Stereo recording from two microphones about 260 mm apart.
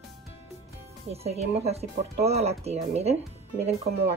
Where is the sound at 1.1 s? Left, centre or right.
Right.